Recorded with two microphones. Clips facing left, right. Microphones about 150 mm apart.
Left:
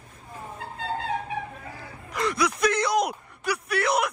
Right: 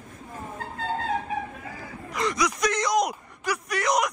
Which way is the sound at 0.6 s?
35° right (ahead or behind).